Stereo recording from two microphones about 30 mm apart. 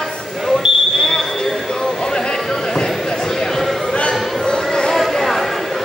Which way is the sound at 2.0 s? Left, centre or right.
Left.